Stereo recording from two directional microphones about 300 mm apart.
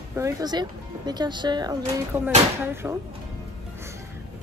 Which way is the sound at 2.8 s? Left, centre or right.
Centre.